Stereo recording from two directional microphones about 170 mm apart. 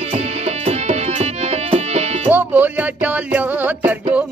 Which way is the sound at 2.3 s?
10° right (ahead or behind).